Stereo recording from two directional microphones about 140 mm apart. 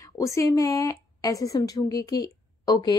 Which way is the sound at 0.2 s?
20° left (ahead or behind).